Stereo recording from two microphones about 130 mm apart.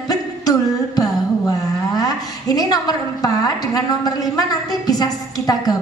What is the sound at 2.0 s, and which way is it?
A woman's voice, 30° left (ahead or behind).